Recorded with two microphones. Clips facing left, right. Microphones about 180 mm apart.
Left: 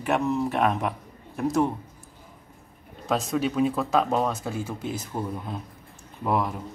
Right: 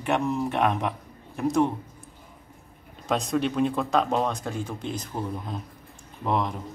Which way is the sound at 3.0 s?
Centre (ahead or behind).